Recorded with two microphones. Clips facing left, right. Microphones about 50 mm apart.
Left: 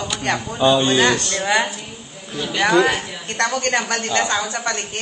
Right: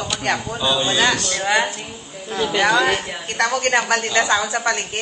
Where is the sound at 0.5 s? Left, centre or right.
Left.